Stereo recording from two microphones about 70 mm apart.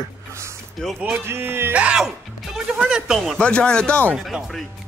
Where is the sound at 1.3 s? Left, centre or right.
Right.